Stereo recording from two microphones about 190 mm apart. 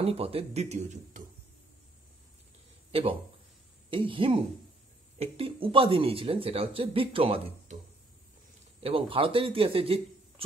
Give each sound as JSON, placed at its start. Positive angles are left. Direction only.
{"t": 0.0, "sound": "speech", "side_deg": -30}
{"t": 2.9, "sound": "speech", "side_deg": -30}
{"t": 8.8, "sound": "speech", "side_deg": -30}